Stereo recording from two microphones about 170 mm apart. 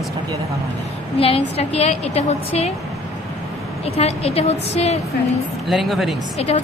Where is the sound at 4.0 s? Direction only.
35° left (ahead or behind).